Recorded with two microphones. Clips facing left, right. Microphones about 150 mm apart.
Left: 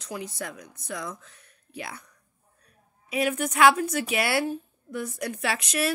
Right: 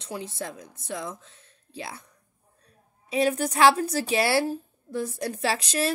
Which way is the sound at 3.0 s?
30° right (ahead or behind).